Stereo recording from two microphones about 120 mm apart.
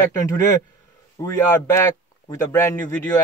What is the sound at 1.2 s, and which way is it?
Speech, 25° left (ahead or behind).